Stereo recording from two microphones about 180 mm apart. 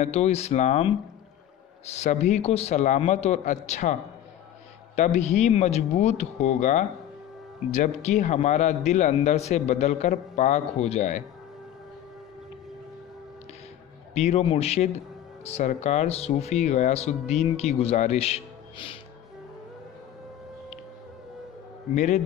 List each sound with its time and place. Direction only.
0.0 s speech: 35° left (ahead or behind)
4.9 s speech: 40° left (ahead or behind)
14.1 s speech: 35° left (ahead or behind)
21.9 s speech: 40° left (ahead or behind)